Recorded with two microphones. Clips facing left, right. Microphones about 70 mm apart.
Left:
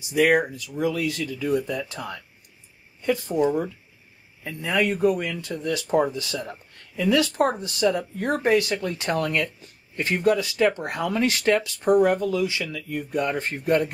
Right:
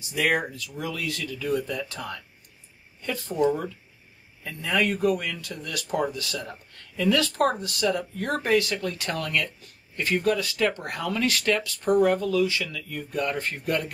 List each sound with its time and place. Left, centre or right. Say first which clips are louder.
0.1 s speech: left 5 dB; centre; by 13.9 s left